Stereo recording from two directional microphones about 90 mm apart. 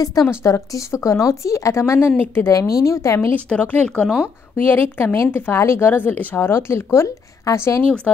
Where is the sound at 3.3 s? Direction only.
15° left (ahead or behind).